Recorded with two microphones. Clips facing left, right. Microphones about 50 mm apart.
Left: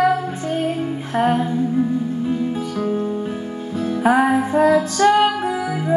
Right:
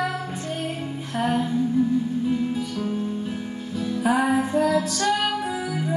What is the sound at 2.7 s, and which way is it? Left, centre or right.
Music, left.